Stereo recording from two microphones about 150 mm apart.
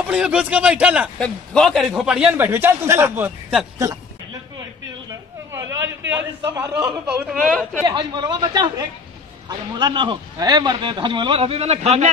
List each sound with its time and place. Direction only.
0.1 s speech: 5° right (ahead or behind)
1.2 s speech: 5° left (ahead or behind)
2.0 s speech: 5° right (ahead or behind)
3.7 s a sound: 20° right (ahead or behind)
5.6 s a sound: 20° right (ahead or behind)
6.7 s speech: 10° right (ahead or behind)
7.8 s a man's voice: 30° right (ahead or behind); by 12.1 s 45° right (ahead or behind)